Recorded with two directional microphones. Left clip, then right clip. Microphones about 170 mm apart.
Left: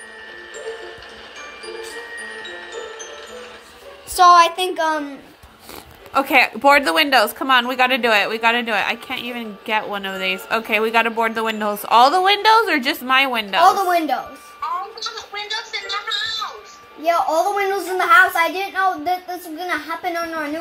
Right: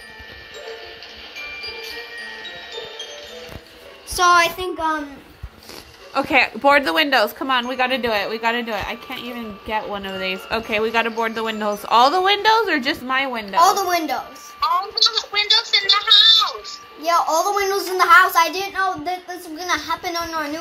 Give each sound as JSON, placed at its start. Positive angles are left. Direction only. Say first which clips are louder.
{"t": 1.6, "sound": "music", "louder": "right 1 dB", "side_deg": 55}
{"t": 4.2, "sound": "a woman's voice", "louder": "left 4 dB", "side_deg": 10}
{"t": 6.1, "sound": "a woman's voice", "louder": "left 2 dB", "side_deg": 0}
{"t": 13.6, "sound": "a woman's voice", "louder": "left 1 dB", "side_deg": 30}
{"t": 14.6, "sound": "a sound", "louder": "right 8 dB", "side_deg": -50}
{"t": 17.0, "sound": "a child's voice", "louder": "left 1 dB", "side_deg": 25}